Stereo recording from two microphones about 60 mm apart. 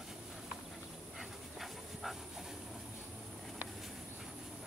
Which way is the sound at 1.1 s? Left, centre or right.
Centre.